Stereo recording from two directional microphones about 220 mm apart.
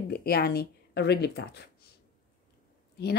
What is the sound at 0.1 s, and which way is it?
Speech, 45° left (ahead or behind).